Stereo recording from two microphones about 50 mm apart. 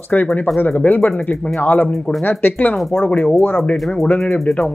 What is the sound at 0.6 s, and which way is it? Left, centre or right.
Speech, left.